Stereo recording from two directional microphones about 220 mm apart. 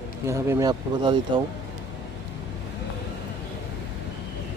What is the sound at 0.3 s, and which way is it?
Speech, 15° right (ahead or behind).